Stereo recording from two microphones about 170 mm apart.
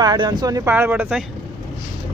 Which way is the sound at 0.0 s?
25° right (ahead or behind).